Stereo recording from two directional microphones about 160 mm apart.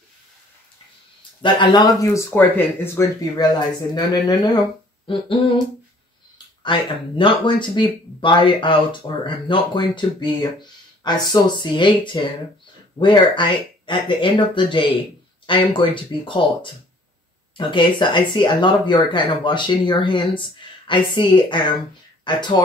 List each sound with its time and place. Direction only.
1.4 s speech: 30° left (ahead or behind)
3.3 s speech: 25° left (ahead or behind)